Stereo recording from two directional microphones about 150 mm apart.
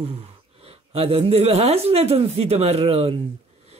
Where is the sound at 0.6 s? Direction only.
40° right (ahead or behind).